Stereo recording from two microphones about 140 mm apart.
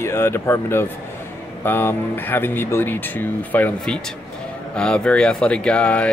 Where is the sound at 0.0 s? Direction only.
15° left (ahead or behind).